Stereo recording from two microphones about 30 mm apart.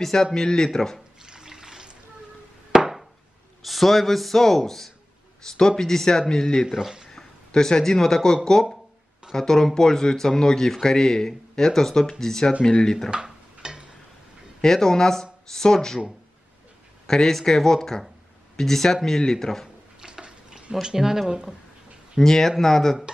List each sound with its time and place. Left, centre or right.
0.0 s a man's voice: centre
1.2 s water: right
2.7 s chop: centre
3.6 s a man's voice: centre; by 12.9 s left
13.1 s dishes: right
14.6 s speech: centre
17.0 s a man's voice: centre
20.0 s a sound: right
20.8 s speech: centre
22.2 s a man's voice: centre